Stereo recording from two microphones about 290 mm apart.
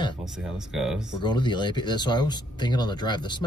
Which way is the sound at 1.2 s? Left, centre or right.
Centre.